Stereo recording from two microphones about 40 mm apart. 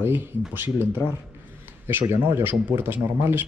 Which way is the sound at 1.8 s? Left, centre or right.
Right.